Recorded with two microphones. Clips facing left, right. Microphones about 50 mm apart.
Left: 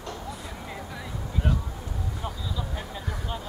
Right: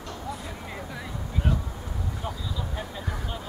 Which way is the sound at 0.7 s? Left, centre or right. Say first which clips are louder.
Right 1 dB; centre.